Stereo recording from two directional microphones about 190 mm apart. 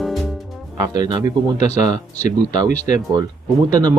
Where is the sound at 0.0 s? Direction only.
Centre (ahead or behind).